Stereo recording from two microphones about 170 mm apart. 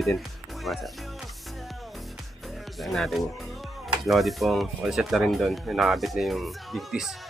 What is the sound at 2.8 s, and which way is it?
Speech, centre (ahead or behind).